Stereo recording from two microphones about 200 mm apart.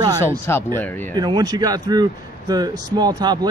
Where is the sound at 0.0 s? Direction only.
20° right (ahead or behind).